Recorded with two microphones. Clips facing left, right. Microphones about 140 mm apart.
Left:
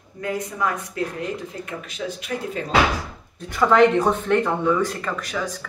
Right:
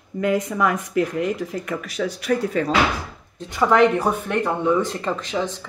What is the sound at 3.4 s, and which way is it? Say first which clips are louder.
Speech: left 1 dB; 15° right (ahead or behind).